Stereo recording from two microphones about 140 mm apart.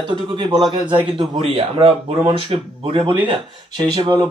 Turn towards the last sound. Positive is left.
turn(degrees=-30)  # may be behind; listen again after turning